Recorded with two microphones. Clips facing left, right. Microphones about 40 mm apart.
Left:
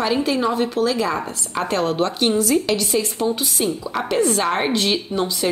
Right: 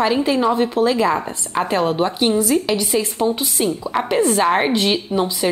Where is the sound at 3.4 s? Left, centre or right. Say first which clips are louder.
Right 2 dB; right.